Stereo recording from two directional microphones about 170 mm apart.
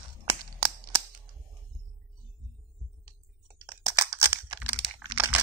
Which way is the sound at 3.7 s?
15° right (ahead or behind).